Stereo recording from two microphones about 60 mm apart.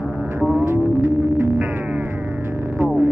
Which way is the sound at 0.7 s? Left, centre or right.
Right.